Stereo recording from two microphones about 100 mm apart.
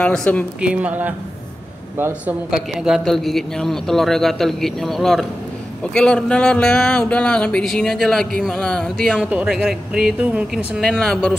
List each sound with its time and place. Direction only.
0.0 s speech: 10° left (ahead or behind)
0.6 s speech: 10° right (ahead or behind)
2.5 s a man's voice: 5° right (ahead or behind)
9.2 s speech: 10° right (ahead or behind)
10.8 s a man's voice: 5° left (ahead or behind)